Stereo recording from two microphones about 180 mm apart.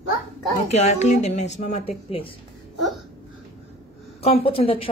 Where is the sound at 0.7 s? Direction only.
40° left (ahead or behind).